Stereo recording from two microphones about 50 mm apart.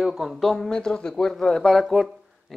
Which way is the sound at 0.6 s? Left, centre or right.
Centre.